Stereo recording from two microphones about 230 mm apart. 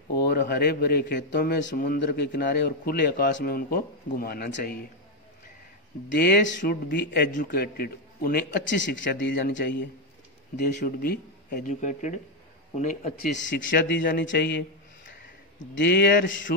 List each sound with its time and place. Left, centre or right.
0.1 s a man's voice: left
6.1 s a man's voice: left
10.8 s a man's voice: left
15.7 s a man's voice: left